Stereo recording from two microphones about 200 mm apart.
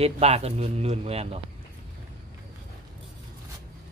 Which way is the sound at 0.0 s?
30° right (ahead or behind).